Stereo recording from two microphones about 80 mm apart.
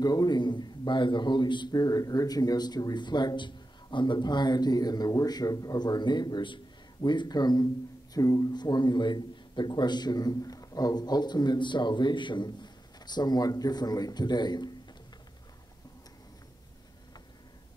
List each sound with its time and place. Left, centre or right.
0.0 s a man's voice: left
1.8 s a man's voice: left
8.1 s a man's voice: left